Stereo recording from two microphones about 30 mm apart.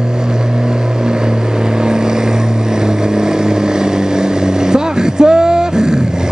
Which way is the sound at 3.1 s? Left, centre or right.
Right.